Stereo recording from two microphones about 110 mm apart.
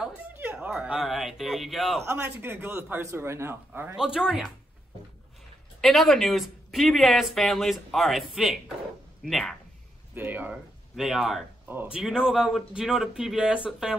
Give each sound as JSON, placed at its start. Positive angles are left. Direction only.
{"t": 0.3, "sound": "speech", "side_deg": -20}
{"t": 2.0, "sound": "a man's voice", "side_deg": -20}
{"t": 3.9, "sound": "speech", "side_deg": -5}
{"t": 5.8, "sound": "speech", "side_deg": 0}
{"t": 10.1, "sound": "speech", "side_deg": -15}
{"t": 11.0, "sound": "speech", "side_deg": -5}
{"t": 11.6, "sound": "speech", "side_deg": -20}
{"t": 11.9, "sound": "speech", "side_deg": -5}